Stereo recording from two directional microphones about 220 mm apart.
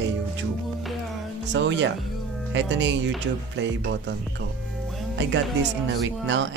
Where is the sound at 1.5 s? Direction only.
55° right (ahead or behind).